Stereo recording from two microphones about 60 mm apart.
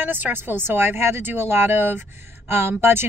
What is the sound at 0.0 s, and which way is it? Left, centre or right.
Speech, right.